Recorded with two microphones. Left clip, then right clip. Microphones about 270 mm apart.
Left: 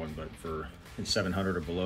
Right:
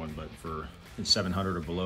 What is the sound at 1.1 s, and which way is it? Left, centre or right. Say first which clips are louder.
Speech: right 2 dB; right.